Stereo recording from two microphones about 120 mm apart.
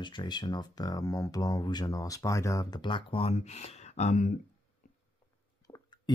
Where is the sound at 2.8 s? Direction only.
45° left (ahead or behind); by 4.3 s 80° left.